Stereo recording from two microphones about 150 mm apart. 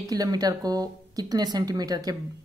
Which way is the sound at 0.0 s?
25° right (ahead or behind).